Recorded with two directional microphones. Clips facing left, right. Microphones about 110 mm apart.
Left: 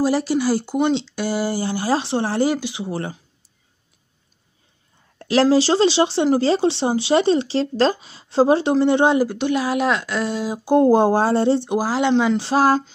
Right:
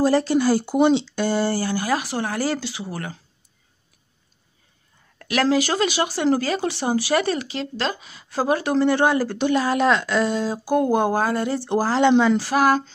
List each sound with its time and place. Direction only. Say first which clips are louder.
0.0 s speech: right 1 dB; 5° left (ahead or behind)
1.6 s speech: left 2 dB; 25° left (ahead or behind)
5.2 s speech: left 4 dB; 30° left (ahead or behind)
9.3 s speech: even; 5° left (ahead or behind)
10.5 s speech: left 10 dB; 25° left (ahead or behind)
11.7 s speech: right 1 dB; 5° left (ahead or behind)
12.4 s speech: left 2 dB; 25° left (ahead or behind)